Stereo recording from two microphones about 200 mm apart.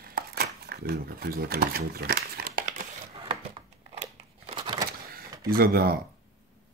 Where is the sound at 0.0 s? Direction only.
50° right (ahead or behind).